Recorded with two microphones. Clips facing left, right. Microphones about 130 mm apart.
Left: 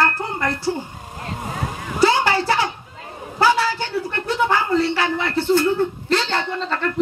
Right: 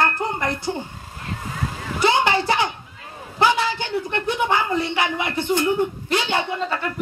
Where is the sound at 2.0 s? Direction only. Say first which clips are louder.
Left 2 dB; 20° right (ahead or behind).